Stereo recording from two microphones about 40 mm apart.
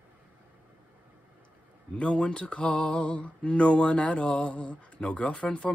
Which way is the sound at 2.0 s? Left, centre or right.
Left.